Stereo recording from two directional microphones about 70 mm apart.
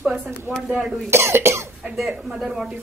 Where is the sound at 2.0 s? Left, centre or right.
Centre.